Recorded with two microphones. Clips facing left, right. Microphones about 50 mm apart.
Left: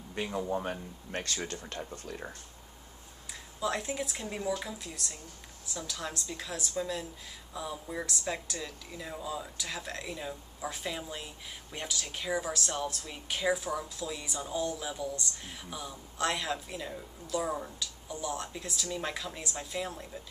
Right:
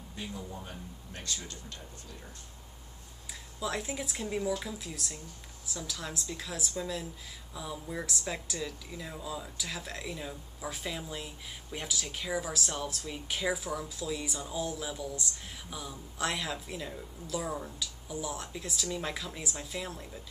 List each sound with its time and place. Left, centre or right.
0.1 s speech: left
3.5 s speech: centre